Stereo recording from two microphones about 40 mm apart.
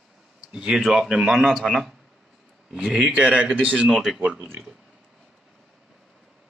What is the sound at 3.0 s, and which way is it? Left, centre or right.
Speech, right.